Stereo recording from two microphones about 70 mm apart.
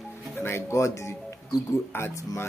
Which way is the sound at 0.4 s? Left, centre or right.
Left.